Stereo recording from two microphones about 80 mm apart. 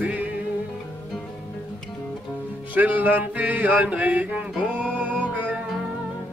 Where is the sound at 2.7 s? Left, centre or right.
Right.